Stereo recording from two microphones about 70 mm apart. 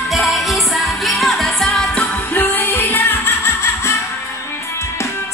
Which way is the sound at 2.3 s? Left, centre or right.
Left.